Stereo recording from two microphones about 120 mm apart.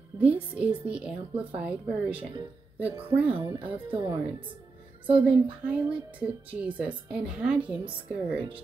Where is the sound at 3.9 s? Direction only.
45° right (ahead or behind).